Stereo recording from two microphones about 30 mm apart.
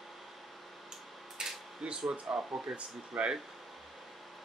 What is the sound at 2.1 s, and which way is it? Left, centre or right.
Speech, right.